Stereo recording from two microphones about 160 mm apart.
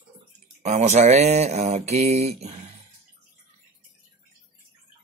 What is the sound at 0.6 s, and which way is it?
Mantra, 45° right (ahead or behind).